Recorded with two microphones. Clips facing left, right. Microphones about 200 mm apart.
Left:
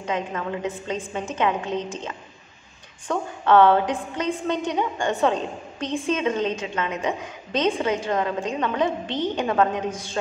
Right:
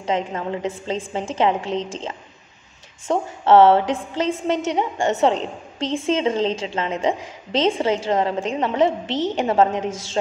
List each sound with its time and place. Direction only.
0.0 s a woman's voice: 30° right (ahead or behind)
3.1 s a woman's voice: 25° right (ahead or behind)
9.0 s a woman's voice: 90° right
9.3 s a woman's voice: 25° right (ahead or behind)